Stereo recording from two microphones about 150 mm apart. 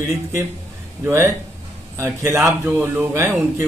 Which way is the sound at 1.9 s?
20° right (ahead or behind).